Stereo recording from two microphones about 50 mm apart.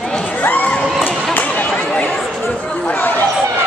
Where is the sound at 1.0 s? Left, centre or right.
Left.